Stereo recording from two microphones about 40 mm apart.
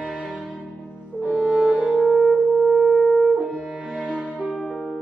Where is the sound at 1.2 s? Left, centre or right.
Right.